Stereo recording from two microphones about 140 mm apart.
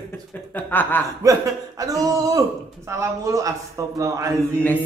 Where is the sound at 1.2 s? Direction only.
25° right (ahead or behind).